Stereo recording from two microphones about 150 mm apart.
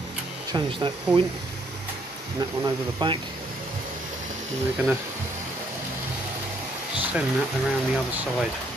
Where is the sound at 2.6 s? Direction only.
30° right (ahead or behind).